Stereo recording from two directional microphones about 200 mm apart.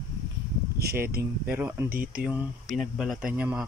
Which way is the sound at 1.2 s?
10° right (ahead or behind).